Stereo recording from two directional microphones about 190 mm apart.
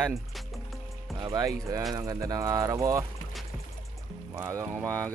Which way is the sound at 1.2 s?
20° right (ahead or behind).